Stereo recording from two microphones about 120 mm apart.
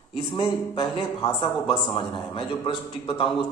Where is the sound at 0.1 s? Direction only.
50° left (ahead or behind).